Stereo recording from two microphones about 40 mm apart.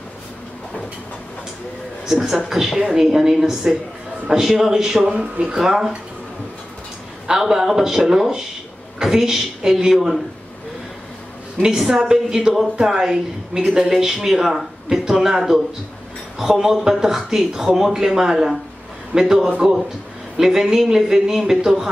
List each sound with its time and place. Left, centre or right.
2.0 s a man's voice: centre
5.1 s speech: right
5.5 s a man's voice: centre
7.2 s a man's voice: centre
9.9 s speech: centre
11.7 s a man's voice: centre